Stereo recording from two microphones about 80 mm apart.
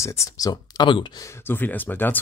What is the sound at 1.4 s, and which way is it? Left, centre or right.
Speech, left.